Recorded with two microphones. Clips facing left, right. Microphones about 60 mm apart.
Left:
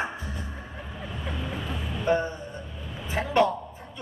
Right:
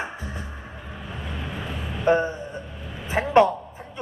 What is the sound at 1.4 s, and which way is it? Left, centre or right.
Vehicle, right.